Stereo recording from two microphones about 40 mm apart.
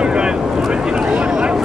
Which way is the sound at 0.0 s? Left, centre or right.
Right.